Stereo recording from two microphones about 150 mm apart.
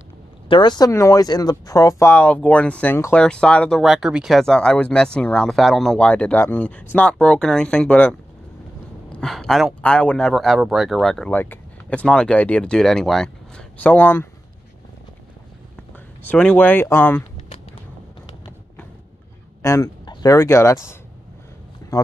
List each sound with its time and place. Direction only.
0.5 s speech: 30° left (ahead or behind); by 14.2 s 15° left (ahead or behind)
16.3 s speech: 10° left (ahead or behind)
19.6 s speech: 20° left (ahead or behind)